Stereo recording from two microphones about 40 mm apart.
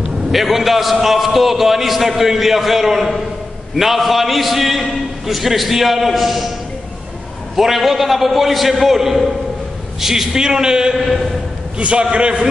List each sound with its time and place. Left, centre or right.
0.0 s a man's voice: centre
7.5 s a man's voice: centre
11.0 s a man's voice: centre
11.8 s a man's voice: right